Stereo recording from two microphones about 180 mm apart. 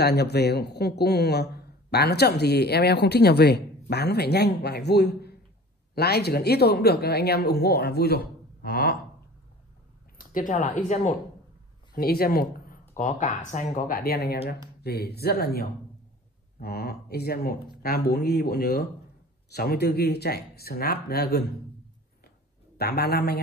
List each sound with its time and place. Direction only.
0.0 s speech: 65° left (ahead or behind)
10.1 s speech: 50° left (ahead or behind)
11.9 s speech: 55° left (ahead or behind)
12.9 s speech: 45° left (ahead or behind); by 21.5 s 60° left (ahead or behind)
22.8 s speech: 65° left (ahead or behind)